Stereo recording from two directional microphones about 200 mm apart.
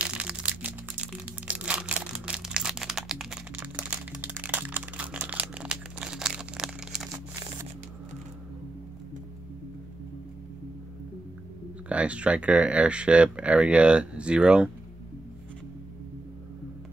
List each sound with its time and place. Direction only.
0.0 s a sound: 5° right (ahead or behind)
7.1 s crumpling: 15° right (ahead or behind)
11.9 s speech: 5° right (ahead or behind)